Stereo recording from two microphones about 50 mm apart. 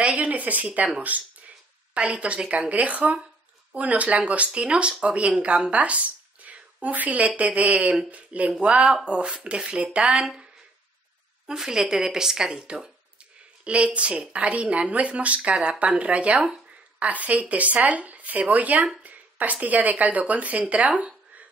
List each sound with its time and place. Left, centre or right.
0.0 s a woman's voice: right